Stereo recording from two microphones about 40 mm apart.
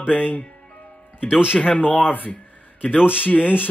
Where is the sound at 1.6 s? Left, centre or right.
Left.